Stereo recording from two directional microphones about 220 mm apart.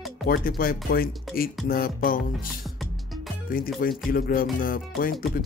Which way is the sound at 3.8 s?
40° left (ahead or behind).